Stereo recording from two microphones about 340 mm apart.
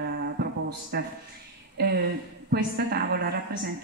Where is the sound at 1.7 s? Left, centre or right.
Right.